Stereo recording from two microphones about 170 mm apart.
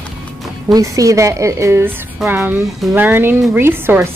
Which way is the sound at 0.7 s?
20° right (ahead or behind).